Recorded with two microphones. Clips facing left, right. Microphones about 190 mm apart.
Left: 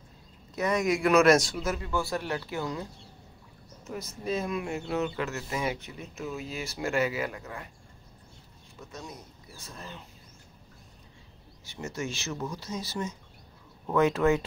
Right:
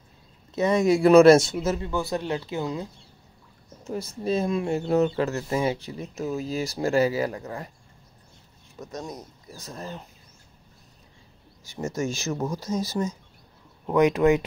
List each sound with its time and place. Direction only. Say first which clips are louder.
0.6 s a man's voice: right 6 dB; 25° right (ahead or behind)
8.7 s speech: right 7 dB; 40° right (ahead or behind)
11.7 s speech: right 7 dB; 45° right (ahead or behind)
13.8 s speech: right 4 dB; 15° right (ahead or behind)